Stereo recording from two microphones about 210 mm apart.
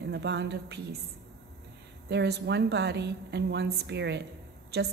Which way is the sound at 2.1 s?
55° right (ahead or behind).